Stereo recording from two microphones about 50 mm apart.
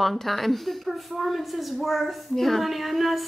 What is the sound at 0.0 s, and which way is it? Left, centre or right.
A woman's voice, centre.